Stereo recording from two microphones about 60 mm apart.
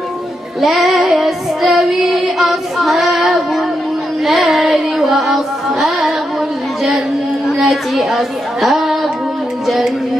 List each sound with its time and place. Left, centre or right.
0.6 s child singing: centre
4.2 s music: centre
7.4 s speech: centre
9.7 s a sound: centre